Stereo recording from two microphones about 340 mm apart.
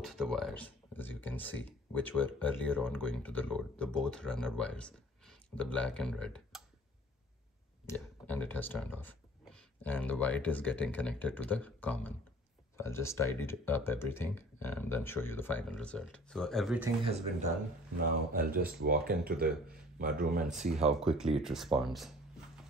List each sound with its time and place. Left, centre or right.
0.0 s speech: centre
7.8 s speech: centre
17.0 s speech: centre
20.7 s speech: centre